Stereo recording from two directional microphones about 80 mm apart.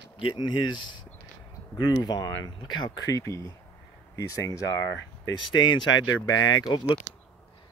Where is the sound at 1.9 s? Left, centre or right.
Left.